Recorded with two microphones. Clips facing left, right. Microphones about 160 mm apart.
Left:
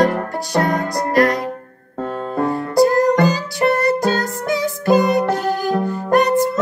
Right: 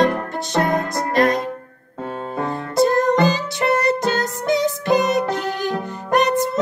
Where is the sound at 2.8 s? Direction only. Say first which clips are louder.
Left 2 dB; 25° right (ahead or behind).